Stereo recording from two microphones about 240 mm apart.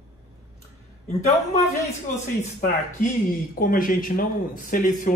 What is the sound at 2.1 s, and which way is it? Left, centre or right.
Speech, left.